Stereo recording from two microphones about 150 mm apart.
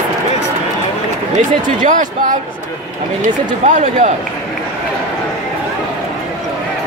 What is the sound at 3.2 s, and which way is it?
Speech, 55° right (ahead or behind).